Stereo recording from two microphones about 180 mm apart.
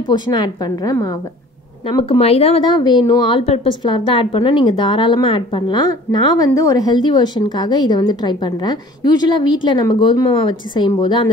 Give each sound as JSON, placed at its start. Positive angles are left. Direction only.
{"t": 0.1, "sound": "a woman's voice", "side_deg": 25}
{"t": 2.0, "sound": "speech", "side_deg": 30}
{"t": 2.7, "sound": "a woman's voice", "side_deg": 25}